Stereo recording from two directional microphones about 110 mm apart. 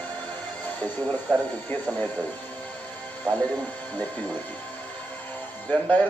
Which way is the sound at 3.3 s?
15° left (ahead or behind).